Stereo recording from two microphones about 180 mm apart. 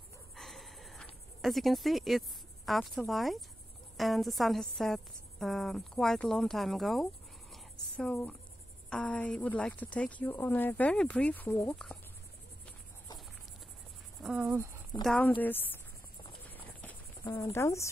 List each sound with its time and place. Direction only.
0.4 s a sound: centre (ahead or behind)
3.1 s cricket: centre (ahead or behind)
7.5 s a sound: 5° left (ahead or behind)
8.9 s speech: 5° left (ahead or behind)
11.7 s cricket: 5° left (ahead or behind)
14.2 s insect: 10° right (ahead or behind)
15.0 s speech: 10° left (ahead or behind)
17.2 s speech: 15° left (ahead or behind)